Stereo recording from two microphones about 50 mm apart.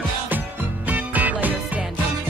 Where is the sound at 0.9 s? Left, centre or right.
Right.